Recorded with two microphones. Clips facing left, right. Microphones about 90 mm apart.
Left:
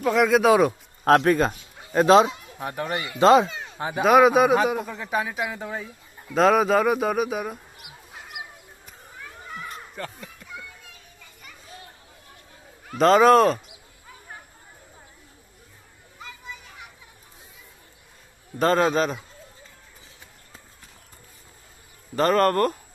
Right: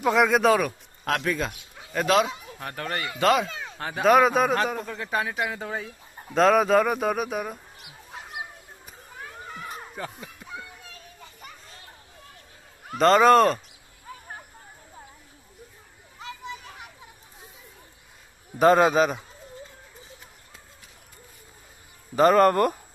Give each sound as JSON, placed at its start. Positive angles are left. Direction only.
{"t": 0.0, "sound": "speech", "side_deg": 0}
{"t": 1.0, "sound": "speech", "side_deg": 45}
{"t": 1.9, "sound": "speech", "side_deg": 30}
{"t": 2.6, "sound": "speech", "side_deg": 15}
{"t": 9.7, "sound": "a sound", "side_deg": -10}
{"t": 12.9, "sound": "speech", "side_deg": 0}
{"t": 18.6, "sound": "speech", "side_deg": -10}
{"t": 22.1, "sound": "speech", "side_deg": -5}